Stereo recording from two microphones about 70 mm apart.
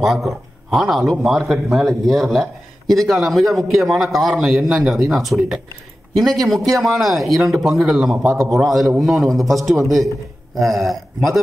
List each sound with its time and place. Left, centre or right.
0.0 s a man's voice: centre
8.2 s a man's voice: right
8.5 s a man's voice: centre